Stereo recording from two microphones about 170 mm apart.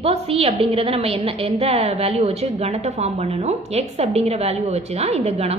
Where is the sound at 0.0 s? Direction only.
35° right (ahead or behind).